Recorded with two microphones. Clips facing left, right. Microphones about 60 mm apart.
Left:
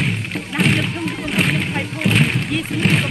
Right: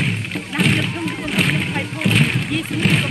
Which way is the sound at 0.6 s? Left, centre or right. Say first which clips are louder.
Left 1 dB; centre.